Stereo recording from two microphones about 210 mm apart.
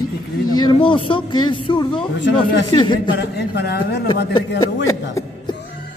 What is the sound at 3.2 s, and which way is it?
Speech, 50° left (ahead or behind).